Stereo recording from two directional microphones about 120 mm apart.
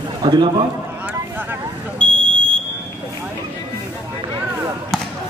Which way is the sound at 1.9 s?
10° left (ahead or behind).